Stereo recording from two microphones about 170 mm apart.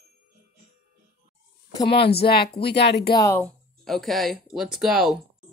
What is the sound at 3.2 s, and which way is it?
Speech, 15° left (ahead or behind).